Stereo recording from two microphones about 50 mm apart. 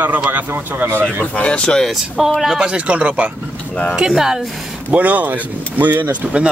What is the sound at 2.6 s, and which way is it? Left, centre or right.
Speech, right.